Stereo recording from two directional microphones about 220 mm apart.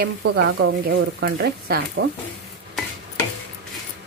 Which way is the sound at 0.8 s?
50° right (ahead or behind).